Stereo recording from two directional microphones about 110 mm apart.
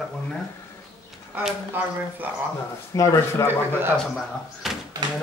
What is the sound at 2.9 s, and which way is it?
Speech, 30° left (ahead or behind).